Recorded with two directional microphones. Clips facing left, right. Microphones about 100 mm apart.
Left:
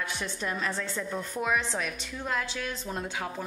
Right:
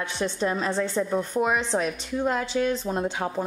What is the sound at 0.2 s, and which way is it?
A woman's voice, 30° right (ahead or behind).